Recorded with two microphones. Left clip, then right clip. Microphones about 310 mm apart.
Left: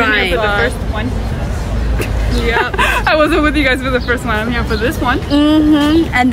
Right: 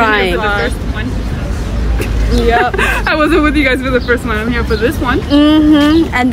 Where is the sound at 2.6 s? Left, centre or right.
Centre.